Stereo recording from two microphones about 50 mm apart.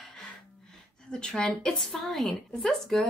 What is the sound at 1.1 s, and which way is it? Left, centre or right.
Speech, centre.